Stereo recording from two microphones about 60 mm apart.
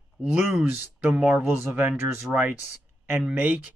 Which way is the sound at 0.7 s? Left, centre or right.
Right.